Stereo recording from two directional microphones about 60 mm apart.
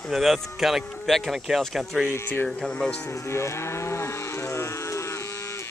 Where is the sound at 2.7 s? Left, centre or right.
Centre.